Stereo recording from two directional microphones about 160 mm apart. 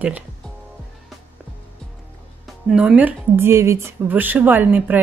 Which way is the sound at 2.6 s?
5° right (ahead or behind).